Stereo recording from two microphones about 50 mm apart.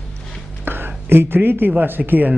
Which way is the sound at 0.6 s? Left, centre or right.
Right.